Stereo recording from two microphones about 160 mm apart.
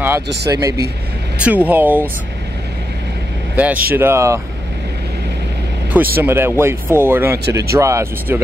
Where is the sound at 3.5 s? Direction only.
10° right (ahead or behind).